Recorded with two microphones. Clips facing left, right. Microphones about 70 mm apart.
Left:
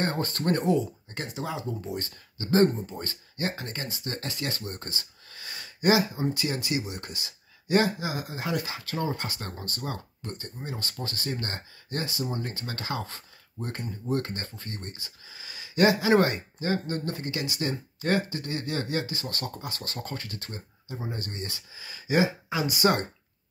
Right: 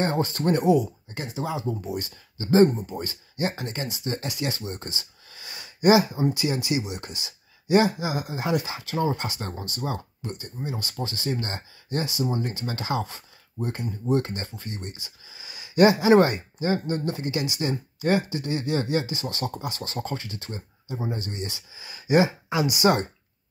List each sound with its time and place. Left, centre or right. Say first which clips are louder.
0.0 s speech: right 4 dB; centre
1.1 s speech: right 3 dB; centre
2.0 s speech: right 3 dB; centre
11.2 s speech: right 4 dB; right
15.7 s speech: right 5 dB; right